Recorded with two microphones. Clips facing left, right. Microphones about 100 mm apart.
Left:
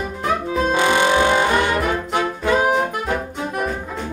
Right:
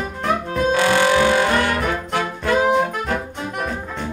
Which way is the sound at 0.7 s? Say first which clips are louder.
Right 1 dB; 20° left (ahead or behind).